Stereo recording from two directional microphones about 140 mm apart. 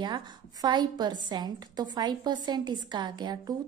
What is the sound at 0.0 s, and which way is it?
A woman's voice, 30° right (ahead or behind).